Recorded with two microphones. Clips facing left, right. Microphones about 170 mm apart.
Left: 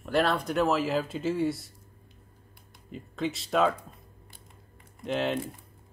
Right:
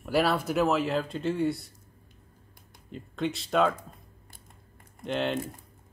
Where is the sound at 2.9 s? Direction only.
Centre (ahead or behind).